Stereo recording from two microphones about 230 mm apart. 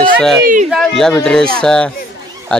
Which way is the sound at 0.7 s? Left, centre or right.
Centre.